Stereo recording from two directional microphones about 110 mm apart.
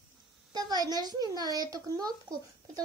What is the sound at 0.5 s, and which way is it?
Speech, 40° right (ahead or behind).